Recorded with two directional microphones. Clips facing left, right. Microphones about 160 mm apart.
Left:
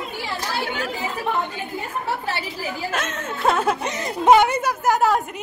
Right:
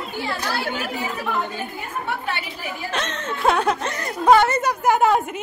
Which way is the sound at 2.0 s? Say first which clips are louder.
Even; 35° left (ahead or behind).